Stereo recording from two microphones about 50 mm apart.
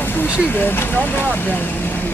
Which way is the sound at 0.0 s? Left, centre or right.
Left.